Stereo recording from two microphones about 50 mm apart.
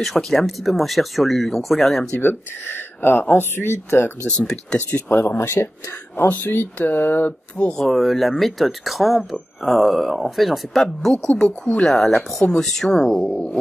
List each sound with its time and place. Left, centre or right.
0.0 s speech: centre
2.1 s speech: left
5.1 s speech: left
6.2 s speech: left
7.7 s speech: centre